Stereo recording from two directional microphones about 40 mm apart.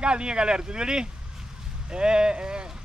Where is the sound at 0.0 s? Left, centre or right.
Right.